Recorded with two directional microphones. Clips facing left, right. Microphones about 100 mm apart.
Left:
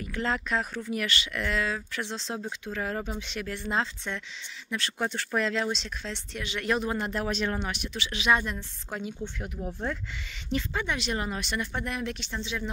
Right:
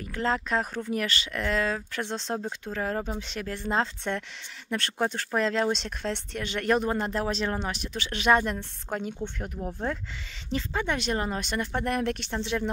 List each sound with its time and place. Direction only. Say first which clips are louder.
0.0 s speech: right 2 dB; 35° right (ahead or behind)
2.6 s speech: right 2 dB; 35° right (ahead or behind); by 4.9 s 50° right (ahead or behind)
4.9 s speech: right 2 dB; 40° right (ahead or behind); by 12.6 s 55° right (ahead or behind)